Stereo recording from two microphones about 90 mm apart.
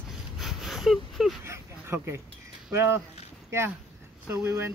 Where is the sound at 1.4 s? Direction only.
30° right (ahead or behind).